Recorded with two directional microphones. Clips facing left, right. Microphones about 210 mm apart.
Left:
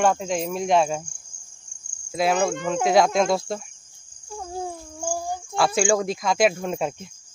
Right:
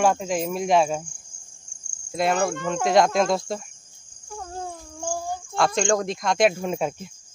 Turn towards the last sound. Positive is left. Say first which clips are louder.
# right 1 dB
turn(degrees=0)  # may be behind; listen again after turning